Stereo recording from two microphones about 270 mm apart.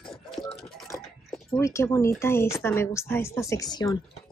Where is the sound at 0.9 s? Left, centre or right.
Centre.